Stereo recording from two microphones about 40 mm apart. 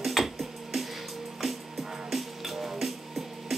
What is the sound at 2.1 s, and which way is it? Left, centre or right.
Music, centre.